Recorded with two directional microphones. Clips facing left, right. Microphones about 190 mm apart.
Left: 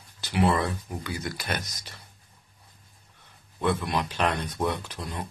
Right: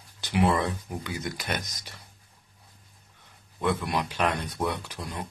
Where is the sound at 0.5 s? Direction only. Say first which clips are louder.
Even; 15° right (ahead or behind).